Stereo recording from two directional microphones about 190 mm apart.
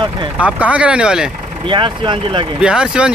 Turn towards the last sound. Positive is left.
turn(degrees=-5)  # may be behind; listen again after turning